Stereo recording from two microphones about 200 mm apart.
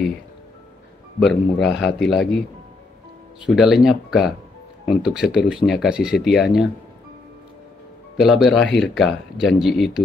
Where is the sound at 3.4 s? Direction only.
Centre (ahead or behind).